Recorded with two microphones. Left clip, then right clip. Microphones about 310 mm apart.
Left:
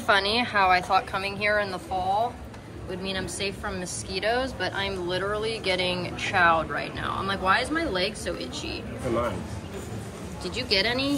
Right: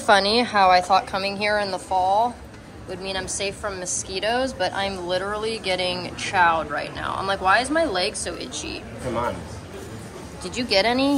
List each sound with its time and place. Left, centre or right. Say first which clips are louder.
0.0 s a woman's voice: right 5 dB; centre
10.4 s a woman's voice: right 4 dB; centre